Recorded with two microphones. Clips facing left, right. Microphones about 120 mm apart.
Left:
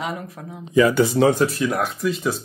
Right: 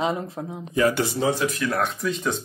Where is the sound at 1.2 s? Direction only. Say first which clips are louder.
Left 6 dB; 90° left.